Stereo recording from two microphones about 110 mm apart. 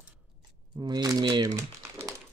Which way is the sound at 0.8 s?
40° right (ahead or behind).